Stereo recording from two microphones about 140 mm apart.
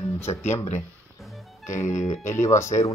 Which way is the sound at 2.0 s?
55° left (ahead or behind).